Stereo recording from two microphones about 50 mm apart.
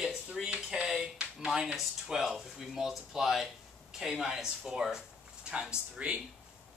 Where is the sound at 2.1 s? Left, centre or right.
Centre.